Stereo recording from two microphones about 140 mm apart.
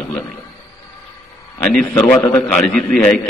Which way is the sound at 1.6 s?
5° left (ahead or behind).